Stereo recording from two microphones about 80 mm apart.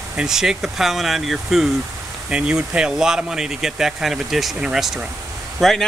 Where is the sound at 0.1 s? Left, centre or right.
Centre.